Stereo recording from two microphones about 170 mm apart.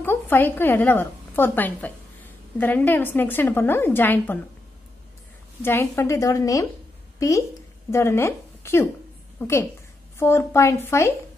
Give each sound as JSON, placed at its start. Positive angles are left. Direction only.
{"t": 0.0, "sound": "a woman's voice", "side_deg": 10}
{"t": 5.6, "sound": "a woman's voice", "side_deg": 15}